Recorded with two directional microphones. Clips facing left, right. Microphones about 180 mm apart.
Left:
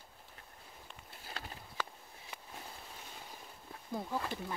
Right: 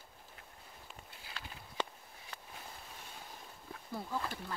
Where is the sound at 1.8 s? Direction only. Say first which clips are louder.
Right 3 dB; 25° right (ahead or behind).